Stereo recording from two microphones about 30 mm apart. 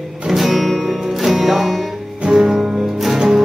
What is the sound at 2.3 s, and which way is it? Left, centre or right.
Music, centre.